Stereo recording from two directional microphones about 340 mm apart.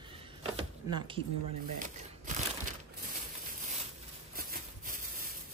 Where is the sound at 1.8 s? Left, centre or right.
Right.